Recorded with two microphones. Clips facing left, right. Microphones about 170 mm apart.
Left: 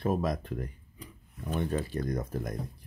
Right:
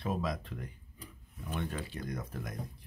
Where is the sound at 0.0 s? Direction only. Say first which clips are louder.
Left 6 dB; 50° left (ahead or behind).